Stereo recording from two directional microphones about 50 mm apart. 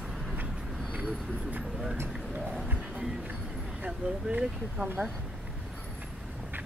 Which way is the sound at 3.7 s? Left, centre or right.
Right.